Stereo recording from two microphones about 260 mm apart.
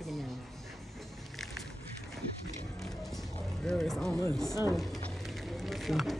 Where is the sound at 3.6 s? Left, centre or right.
Centre.